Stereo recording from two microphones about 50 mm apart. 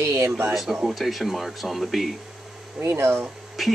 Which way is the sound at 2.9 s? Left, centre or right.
Right.